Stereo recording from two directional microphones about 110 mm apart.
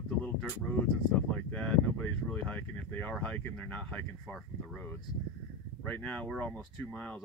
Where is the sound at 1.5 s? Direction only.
10° left (ahead or behind).